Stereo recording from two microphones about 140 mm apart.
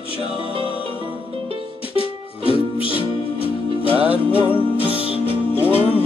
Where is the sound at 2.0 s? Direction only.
40° left (ahead or behind).